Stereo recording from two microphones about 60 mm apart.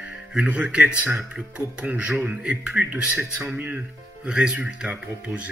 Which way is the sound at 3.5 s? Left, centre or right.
Right.